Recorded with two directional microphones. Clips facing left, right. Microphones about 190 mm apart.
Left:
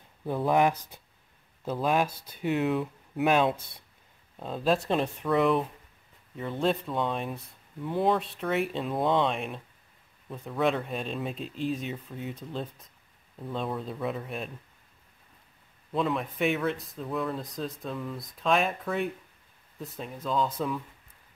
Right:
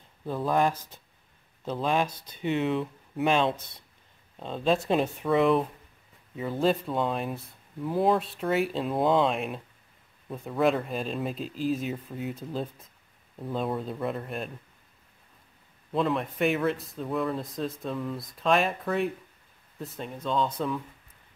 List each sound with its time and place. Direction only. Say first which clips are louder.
0.3 s speech: left 1 dB; 15° left (ahead or behind); by 14.5 s centre (ahead or behind)
15.9 s speech: right 2 dB; centre (ahead or behind)